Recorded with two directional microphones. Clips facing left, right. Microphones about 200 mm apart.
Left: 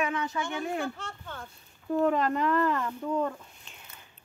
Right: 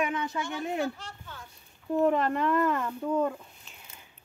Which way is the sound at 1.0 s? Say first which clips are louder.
Left 4 dB; 55° left (ahead or behind).